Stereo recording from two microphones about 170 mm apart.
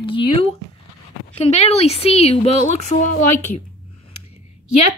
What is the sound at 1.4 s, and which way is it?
A woman's voice, 40° left (ahead or behind).